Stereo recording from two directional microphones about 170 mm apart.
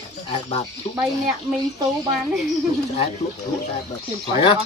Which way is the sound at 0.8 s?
45° left (ahead or behind).